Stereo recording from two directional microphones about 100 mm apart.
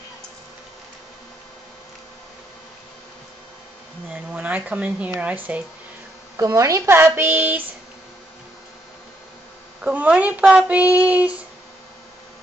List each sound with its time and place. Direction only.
4.1 s speech: 15° right (ahead or behind)
6.3 s a woman's voice: 30° right (ahead or behind)
9.8 s speech: 10° right (ahead or behind)